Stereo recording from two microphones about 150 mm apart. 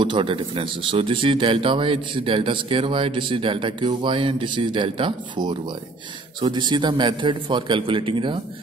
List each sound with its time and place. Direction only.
0.0 s speech: 35° right (ahead or behind)